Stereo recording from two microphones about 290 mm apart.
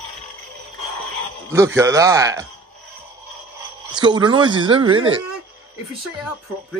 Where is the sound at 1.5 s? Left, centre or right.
Centre.